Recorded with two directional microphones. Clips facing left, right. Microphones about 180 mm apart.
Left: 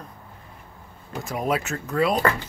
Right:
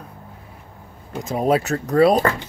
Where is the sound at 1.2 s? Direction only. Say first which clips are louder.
Right 6 dB; 30° right (ahead or behind).